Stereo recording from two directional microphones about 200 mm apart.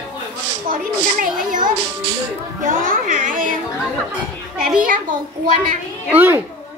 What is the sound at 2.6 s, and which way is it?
Speech, 40° right (ahead or behind).